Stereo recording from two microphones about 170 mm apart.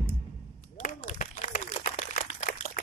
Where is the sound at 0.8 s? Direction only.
45° left (ahead or behind).